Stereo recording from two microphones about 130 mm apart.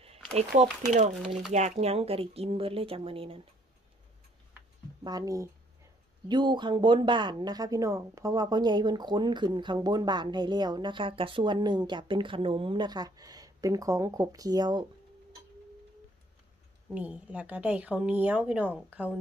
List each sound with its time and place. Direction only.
0.4 s speech: 60° right (ahead or behind); by 3.4 s 45° right (ahead or behind)
5.0 s speech: 30° right (ahead or behind)
16.9 s speech: 10° right (ahead or behind)